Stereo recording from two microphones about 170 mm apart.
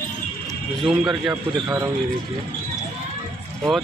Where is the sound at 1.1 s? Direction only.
25° right (ahead or behind).